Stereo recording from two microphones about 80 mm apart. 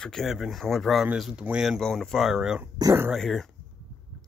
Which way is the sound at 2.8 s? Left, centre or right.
Right.